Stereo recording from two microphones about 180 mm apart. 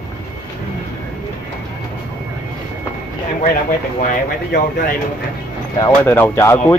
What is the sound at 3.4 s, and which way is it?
Speech, 45° left (ahead or behind).